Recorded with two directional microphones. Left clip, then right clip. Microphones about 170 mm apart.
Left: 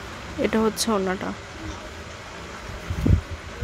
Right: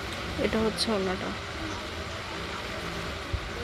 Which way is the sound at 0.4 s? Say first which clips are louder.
Left 5 dB; 35° left (ahead or behind).